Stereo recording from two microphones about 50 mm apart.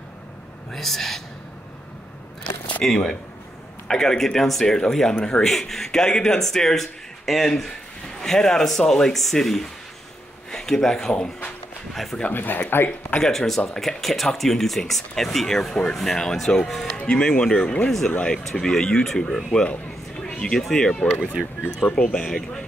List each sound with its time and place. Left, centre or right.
0.7 s speech: centre
2.8 s a man's voice: centre
12.3 s speech: left
13.2 s a man's voice: centre
16.9 s a man's voice: centre
20.2 s a sound: centre
20.6 s a man's voice: centre